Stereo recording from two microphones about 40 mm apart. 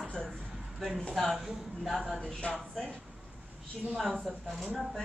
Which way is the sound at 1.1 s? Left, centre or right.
Centre.